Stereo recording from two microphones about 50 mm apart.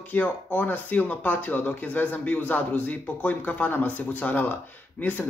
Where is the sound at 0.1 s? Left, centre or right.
Left.